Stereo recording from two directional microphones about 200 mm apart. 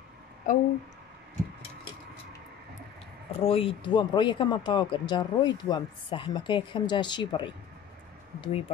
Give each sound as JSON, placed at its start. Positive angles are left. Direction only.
{"t": 0.5, "sound": "speech", "side_deg": 40}
{"t": 3.3, "sound": "speech", "side_deg": 30}